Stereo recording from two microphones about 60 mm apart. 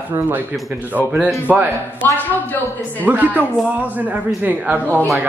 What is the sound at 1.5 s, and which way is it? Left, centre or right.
Speech, right.